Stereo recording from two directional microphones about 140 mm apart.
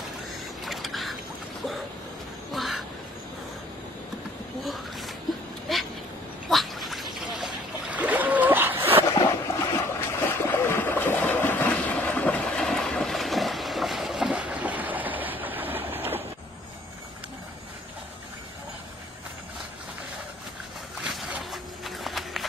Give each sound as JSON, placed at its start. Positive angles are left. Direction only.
{"t": 0.7, "sound": "boat", "side_deg": 0}
{"t": 2.5, "sound": "duck", "side_deg": 0}
{"t": 4.6, "sound": "a sound", "side_deg": 0}
{"t": 6.5, "sound": "splash", "side_deg": 0}
{"t": 9.2, "sound": "boat", "side_deg": 20}
{"t": 21.0, "sound": "a sound", "side_deg": 0}